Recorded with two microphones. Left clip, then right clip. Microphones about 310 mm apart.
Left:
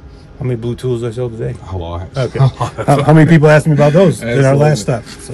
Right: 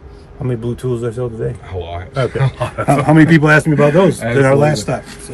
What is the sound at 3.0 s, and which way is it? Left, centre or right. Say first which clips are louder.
A man's voice: left 1 dB; left.